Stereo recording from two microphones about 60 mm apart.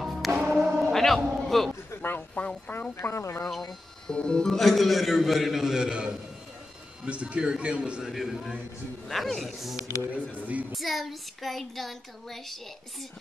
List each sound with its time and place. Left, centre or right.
0.0 s music: centre
0.3 s music: centre
0.6 s a sound: centre
0.8 s a sound: centre
1.5 s a man's voice: centre
2.0 s speech: left
4.1 s a man's voice: centre
8.0 s a man's voice: centre